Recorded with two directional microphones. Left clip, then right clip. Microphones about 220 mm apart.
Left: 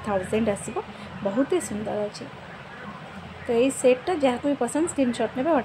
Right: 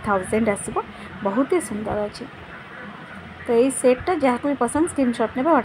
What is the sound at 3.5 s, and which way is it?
A woman's voice, 5° right (ahead or behind).